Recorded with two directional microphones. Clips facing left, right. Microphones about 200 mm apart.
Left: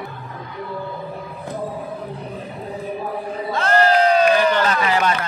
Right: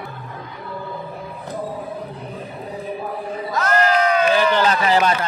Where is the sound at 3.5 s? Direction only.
30° left (ahead or behind).